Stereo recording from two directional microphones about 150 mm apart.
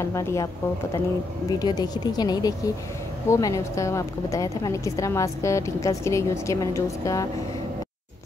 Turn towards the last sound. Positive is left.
turn(degrees=20)  # may be behind; listen again after turning